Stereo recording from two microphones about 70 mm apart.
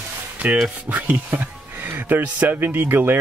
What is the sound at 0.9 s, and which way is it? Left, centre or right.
Speech, right.